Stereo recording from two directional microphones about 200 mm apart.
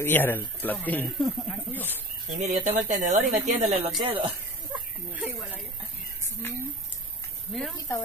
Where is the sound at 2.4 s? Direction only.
35° right (ahead or behind).